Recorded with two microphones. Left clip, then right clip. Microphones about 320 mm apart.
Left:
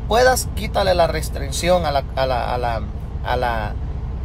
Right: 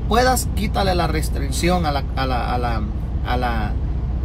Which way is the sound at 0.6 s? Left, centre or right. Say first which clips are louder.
Left 4 dB; centre.